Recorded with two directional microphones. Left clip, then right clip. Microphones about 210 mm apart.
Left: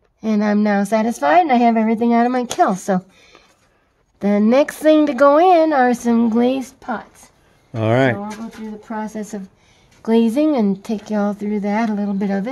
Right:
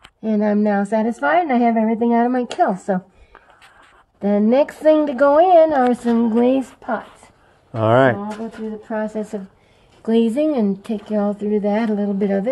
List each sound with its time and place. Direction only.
0.2 s speech: 35° left (ahead or behind)
4.2 s speech: 40° left (ahead or behind)
7.7 s speech: 10° left (ahead or behind)
8.8 s speech: 45° left (ahead or behind)